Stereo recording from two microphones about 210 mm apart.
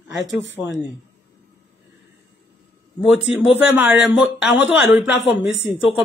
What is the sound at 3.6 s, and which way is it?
Speech, 5° right (ahead or behind).